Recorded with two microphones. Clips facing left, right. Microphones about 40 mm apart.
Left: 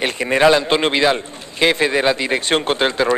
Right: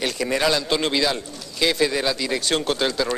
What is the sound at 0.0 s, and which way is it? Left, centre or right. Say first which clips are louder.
Speech: left 7 dB; left.